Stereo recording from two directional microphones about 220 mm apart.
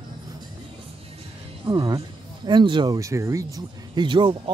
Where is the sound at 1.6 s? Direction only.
15° right (ahead or behind).